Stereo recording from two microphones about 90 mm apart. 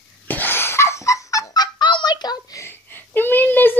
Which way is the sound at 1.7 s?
55° left (ahead or behind).